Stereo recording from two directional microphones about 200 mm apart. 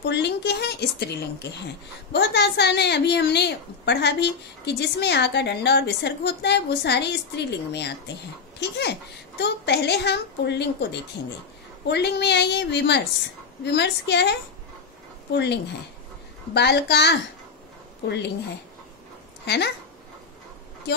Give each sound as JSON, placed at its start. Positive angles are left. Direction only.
{"t": 0.0, "sound": "a woman's voice", "side_deg": 60}
{"t": 19.4, "sound": "speech", "side_deg": 60}